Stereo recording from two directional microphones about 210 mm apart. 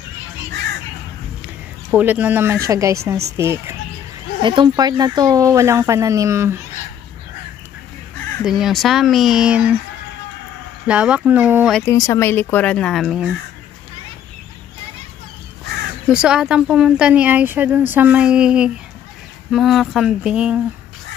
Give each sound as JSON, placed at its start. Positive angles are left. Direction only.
{"t": 1.9, "sound": "speech", "side_deg": -10}
{"t": 8.5, "sound": "speech", "side_deg": 0}
{"t": 10.9, "sound": "speech", "side_deg": -5}
{"t": 11.8, "sound": "speech", "side_deg": 15}
{"t": 16.1, "sound": "speech", "side_deg": -5}